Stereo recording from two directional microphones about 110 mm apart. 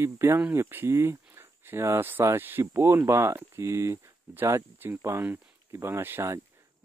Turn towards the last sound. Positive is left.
turn(degrees=-25)  # may be behind; listen again after turning